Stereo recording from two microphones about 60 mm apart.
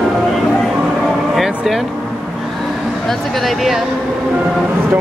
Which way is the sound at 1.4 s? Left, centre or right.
Centre.